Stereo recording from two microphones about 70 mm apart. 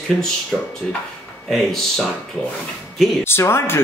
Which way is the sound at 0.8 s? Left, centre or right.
Centre.